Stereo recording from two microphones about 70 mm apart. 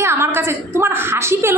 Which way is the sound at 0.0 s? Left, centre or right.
Right.